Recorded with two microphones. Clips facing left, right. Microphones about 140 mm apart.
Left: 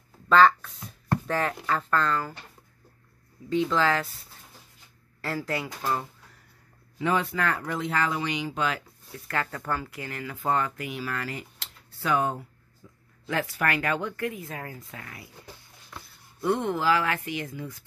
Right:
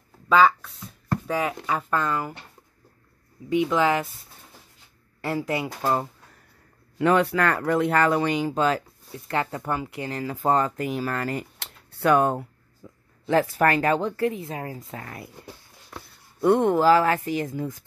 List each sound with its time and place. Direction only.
0.3 s speech: 10° right (ahead or behind)
3.4 s speech: 15° right (ahead or behind)
5.2 s speech: 20° right (ahead or behind)
5.8 s speech: 35° right (ahead or behind)
7.0 s speech: 65° right (ahead or behind); by 8.8 s 40° right (ahead or behind)
9.1 s speech: 20° right (ahead or behind); by 12.4 s 55° right (ahead or behind)
12.8 s a sound: 55° right (ahead or behind)
13.3 s speech: 35° right (ahead or behind)
16.3 s speech: 55° right (ahead or behind)